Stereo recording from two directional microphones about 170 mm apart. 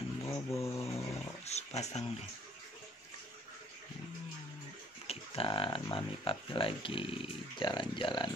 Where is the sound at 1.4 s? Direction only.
40° left (ahead or behind).